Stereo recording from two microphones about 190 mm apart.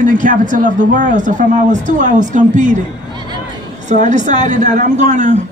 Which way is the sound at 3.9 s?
40° right (ahead or behind).